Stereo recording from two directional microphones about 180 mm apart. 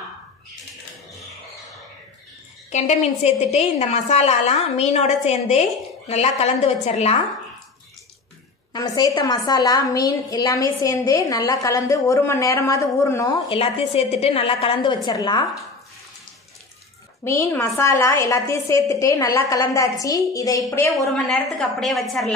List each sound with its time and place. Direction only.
2.7 s a woman's voice: 40° left (ahead or behind)
8.7 s a woman's voice: 20° left (ahead or behind)
13.5 s a woman's voice: 30° left (ahead or behind)
17.2 s a woman's voice: 15° left (ahead or behind)
21.1 s a woman's voice: centre (ahead or behind)